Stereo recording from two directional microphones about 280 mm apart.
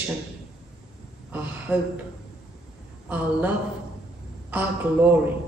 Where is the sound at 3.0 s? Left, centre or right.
Centre.